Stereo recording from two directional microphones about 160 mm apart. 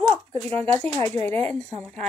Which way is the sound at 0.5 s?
10° left (ahead or behind).